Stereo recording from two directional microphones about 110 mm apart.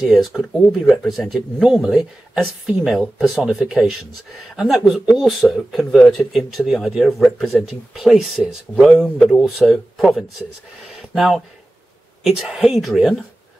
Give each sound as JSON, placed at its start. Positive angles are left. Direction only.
{"t": 0.0, "sound": "speech", "side_deg": 0}